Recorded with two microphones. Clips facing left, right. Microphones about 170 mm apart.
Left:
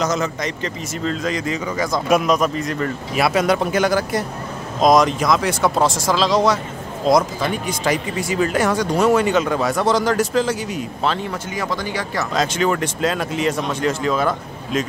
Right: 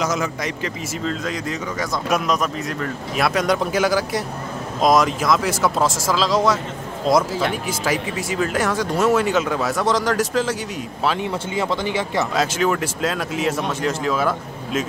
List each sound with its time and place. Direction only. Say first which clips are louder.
0.0 s speech: left 2 dB; 10° right (ahead or behind)
11.5 s speech: right 3 dB; 25° right (ahead or behind)
12.4 s speech: left 3 dB; 5° right (ahead or behind)